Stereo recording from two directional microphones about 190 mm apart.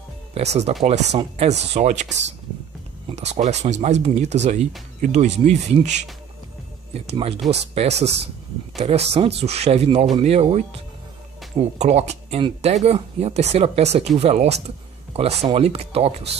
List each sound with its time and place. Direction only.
0.3 s speech: 35° right (ahead or behind)
3.2 s speech: 35° right (ahead or behind)